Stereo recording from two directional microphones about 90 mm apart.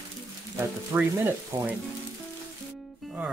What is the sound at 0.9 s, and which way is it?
Frying, 15° right (ahead or behind).